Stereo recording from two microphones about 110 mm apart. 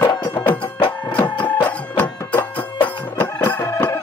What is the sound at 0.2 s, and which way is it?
Music, 20° left (ahead or behind).